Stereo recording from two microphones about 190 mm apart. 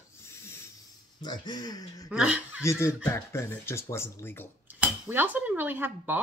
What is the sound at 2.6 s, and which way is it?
Speech, 15° left (ahead or behind).